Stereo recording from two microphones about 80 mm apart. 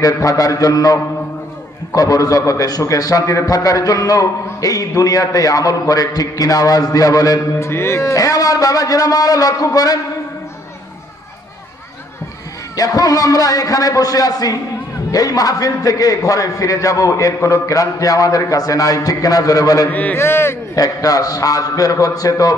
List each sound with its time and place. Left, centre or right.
0.0 s a man's voice: left
7.5 s a man's voice: left
12.7 s a man's voice: left
19.9 s a man's voice: centre
20.2 s speech: left
20.7 s a man's voice: left